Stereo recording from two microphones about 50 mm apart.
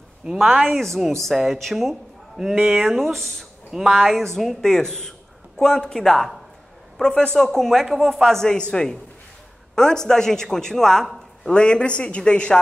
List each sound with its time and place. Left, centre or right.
0.4 s a man's voice: centre
8.5 s a man's voice: centre
11.5 s speech: centre